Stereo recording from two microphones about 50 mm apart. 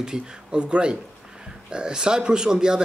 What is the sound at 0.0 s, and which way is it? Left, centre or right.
Speech, centre.